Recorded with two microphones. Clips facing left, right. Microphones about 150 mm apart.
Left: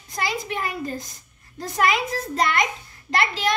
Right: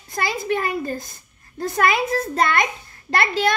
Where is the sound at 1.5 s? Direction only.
55° right (ahead or behind).